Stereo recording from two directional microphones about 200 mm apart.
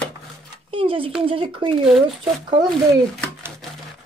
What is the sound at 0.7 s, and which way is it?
Speech, 25° right (ahead or behind).